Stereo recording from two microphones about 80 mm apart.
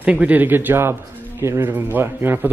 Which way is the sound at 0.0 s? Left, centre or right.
Centre.